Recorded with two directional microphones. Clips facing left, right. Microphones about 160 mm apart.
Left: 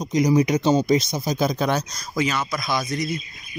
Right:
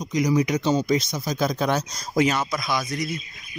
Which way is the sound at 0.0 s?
30° left (ahead or behind).